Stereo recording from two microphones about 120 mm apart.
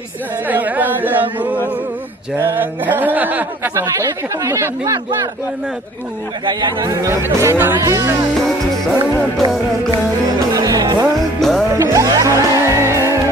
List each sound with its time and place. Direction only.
0.5 s a sound: 15° right (ahead or behind)
2.3 s speech: 20° right (ahead or behind)
3.7 s speech: 25° right (ahead or behind)
6.4 s speech: 30° right (ahead or behind)
10.5 s music: 30° right (ahead or behind)
11.3 s music: 5° left (ahead or behind)
11.7 s music: 25° right (ahead or behind)